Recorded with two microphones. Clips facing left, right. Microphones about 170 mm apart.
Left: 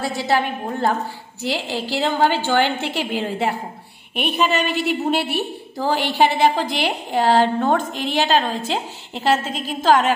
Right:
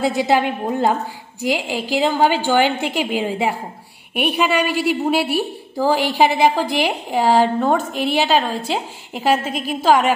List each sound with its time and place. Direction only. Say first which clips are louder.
0.0 s a woman's voice: right 4 dB; 20° right (ahead or behind)